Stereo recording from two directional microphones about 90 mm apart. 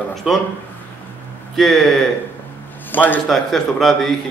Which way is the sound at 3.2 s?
5° left (ahead or behind).